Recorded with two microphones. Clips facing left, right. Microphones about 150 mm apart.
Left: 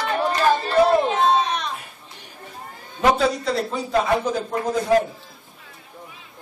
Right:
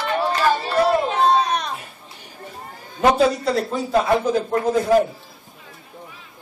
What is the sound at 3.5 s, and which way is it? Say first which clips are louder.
Speech: right 2 dB; 5° right (ahead or behind).